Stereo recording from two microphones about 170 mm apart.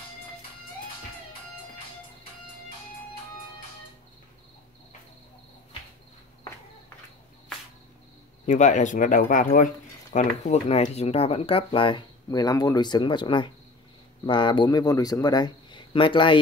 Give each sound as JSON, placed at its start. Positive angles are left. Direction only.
{"t": 8.5, "sound": "speech", "side_deg": 45}